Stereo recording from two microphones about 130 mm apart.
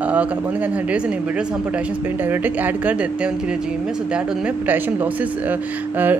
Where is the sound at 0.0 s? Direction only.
10° right (ahead or behind).